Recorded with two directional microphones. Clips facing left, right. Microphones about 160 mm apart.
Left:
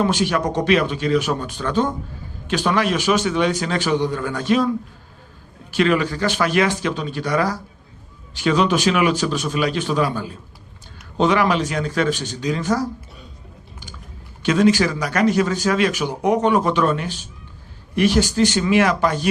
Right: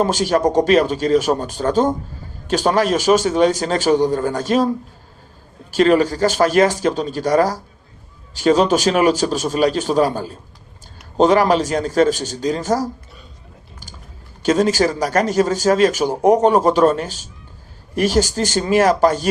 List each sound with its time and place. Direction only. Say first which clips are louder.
0.0 s speech: right 3 dB; 40° right (ahead or behind)
14.4 s speech: right 1 dB; 40° right (ahead or behind)